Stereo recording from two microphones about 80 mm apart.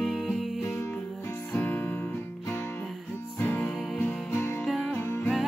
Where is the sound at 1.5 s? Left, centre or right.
Left.